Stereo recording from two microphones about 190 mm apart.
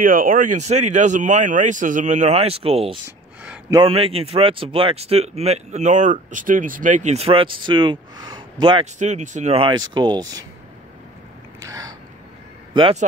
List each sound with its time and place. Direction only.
0.0 s a man's voice: 45° right (ahead or behind); by 8.8 s 25° right (ahead or behind)
8.9 s speech: 40° right (ahead or behind); by 10.4 s 20° right (ahead or behind)
11.6 s a sound: 15° right (ahead or behind)
12.7 s speech: 25° right (ahead or behind)